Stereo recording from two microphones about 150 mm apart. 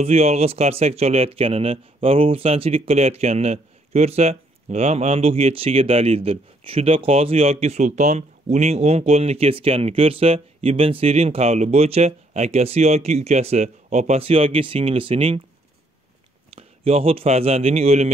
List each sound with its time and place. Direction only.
0.0 s speech: 45° right (ahead or behind)
16.5 s speech: 40° right (ahead or behind)